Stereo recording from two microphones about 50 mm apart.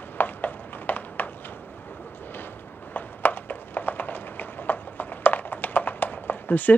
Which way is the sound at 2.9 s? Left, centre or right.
Left.